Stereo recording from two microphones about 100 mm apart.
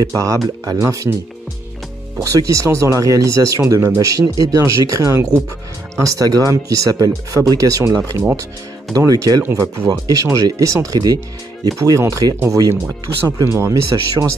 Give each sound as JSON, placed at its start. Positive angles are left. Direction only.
{"t": 0.0, "sound": "speech", "side_deg": -35}
{"t": 2.2, "sound": "speech", "side_deg": -35}